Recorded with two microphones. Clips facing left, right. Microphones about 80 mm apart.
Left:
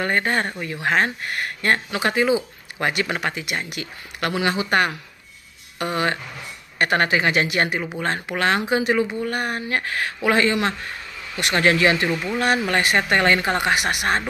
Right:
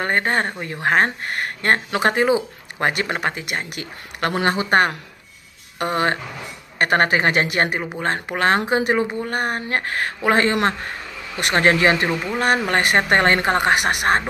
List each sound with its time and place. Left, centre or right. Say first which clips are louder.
0.0 s speech: right 1 dB; right